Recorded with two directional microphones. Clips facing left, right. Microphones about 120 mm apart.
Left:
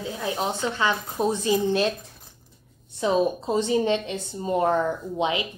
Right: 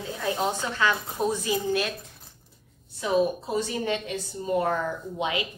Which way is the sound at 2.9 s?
25° left (ahead or behind).